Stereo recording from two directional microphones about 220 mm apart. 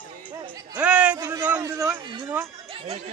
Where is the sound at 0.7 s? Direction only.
5° right (ahead or behind).